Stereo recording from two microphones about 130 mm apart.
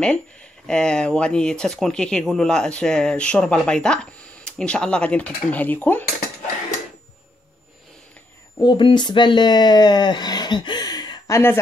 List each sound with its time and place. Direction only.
0.0 s speech: 10° left (ahead or behind)
8.5 s speech: 35° left (ahead or behind)